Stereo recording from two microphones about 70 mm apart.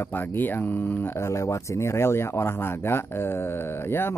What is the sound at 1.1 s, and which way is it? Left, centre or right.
Speech, left.